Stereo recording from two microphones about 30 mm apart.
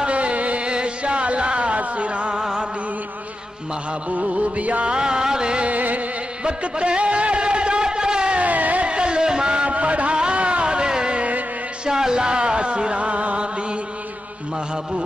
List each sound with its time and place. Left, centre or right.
0.0 s music: right
0.7 s music: right
4.1 s music: right
4.8 s music: right
5.7 s music: right
6.4 s music: right
8.4 s music: right
8.8 s a sound: right
9.7 s a sound: right
10.1 s a sound: right
11.9 s speech: right